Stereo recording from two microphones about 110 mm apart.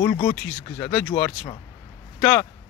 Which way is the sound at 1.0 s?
15° left (ahead or behind).